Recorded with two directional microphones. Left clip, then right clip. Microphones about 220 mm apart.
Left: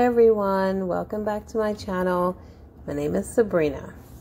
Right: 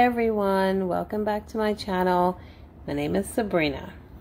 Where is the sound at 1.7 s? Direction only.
15° left (ahead or behind).